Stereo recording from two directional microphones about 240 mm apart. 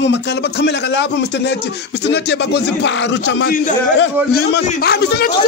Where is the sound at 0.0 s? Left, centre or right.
Left.